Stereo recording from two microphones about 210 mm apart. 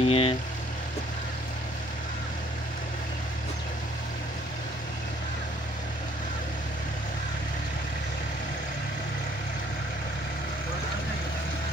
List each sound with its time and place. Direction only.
0.0 s vehicle: 25° left (ahead or behind)